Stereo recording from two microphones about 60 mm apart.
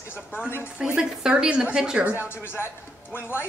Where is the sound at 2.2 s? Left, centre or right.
Left.